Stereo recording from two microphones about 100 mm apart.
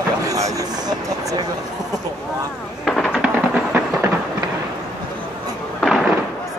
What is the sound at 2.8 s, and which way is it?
Fireworks, 5° left (ahead or behind).